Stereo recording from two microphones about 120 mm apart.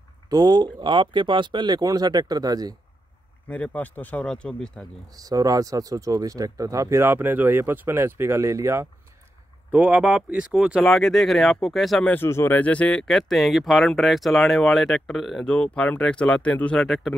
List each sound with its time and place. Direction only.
0.3 s speech: 35° right (ahead or behind)
3.4 s speech: 10° left (ahead or behind)
5.1 s speech: 30° right (ahead or behind)
9.7 s speech: 10° right (ahead or behind)
12.1 s speech: 20° left (ahead or behind); by 17.1 s 5° left (ahead or behind)